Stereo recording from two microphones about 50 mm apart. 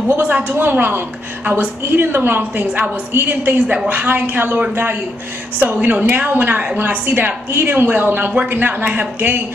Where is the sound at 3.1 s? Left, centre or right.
Right.